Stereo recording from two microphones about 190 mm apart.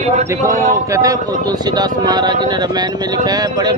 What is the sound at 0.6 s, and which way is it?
A man's voice, 15° right (ahead or behind).